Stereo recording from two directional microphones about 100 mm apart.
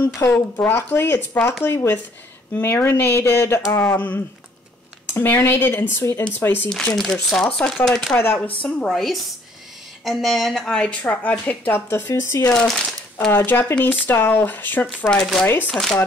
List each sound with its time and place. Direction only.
0.0 s speech: 15° left (ahead or behind)
6.7 s speech: 5° left (ahead or behind)
8.1 s speech: 20° left (ahead or behind)
12.5 s speech: 5° left (ahead or behind)
13.3 s speech: 20° left (ahead or behind)
15.7 s speech: 5° left (ahead or behind)